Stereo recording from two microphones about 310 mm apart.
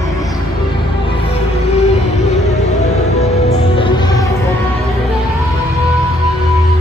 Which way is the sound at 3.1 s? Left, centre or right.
Left.